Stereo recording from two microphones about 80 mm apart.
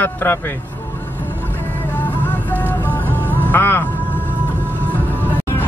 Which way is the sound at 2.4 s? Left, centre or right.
Left.